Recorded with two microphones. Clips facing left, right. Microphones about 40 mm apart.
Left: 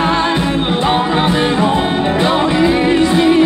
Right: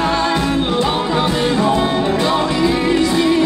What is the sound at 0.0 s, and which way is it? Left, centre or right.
Music, left.